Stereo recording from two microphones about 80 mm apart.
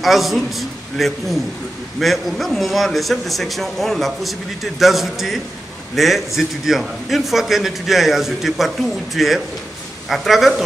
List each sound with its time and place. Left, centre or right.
0.0 s a man's voice: centre